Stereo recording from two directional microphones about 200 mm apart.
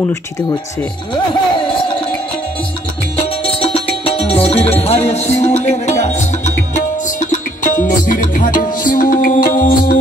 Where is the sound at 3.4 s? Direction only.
30° left (ahead or behind).